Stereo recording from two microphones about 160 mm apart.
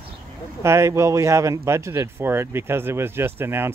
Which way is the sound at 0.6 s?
15° right (ahead or behind).